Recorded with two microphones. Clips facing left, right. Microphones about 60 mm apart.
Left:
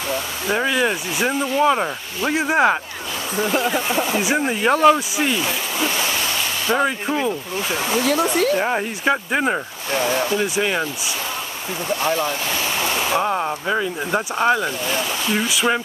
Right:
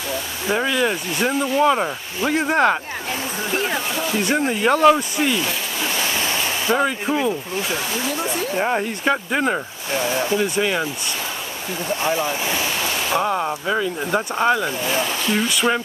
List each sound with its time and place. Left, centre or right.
0.5 s speech: centre
3.9 s speech: left
4.2 s speech: centre
8.0 s speech: left
8.5 s speech: centre
12.0 s speech: centre
13.1 s speech: centre